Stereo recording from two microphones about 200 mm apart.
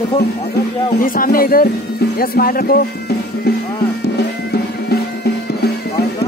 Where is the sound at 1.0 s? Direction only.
45° left (ahead or behind).